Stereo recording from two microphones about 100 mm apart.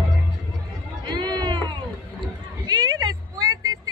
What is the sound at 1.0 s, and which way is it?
Run, 45° right (ahead or behind).